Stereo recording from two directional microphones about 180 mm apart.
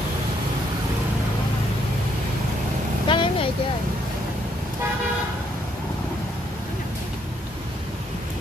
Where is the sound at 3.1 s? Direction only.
30° left (ahead or behind).